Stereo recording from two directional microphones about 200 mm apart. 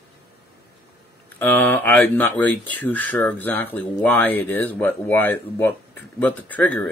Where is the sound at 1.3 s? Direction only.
10° left (ahead or behind).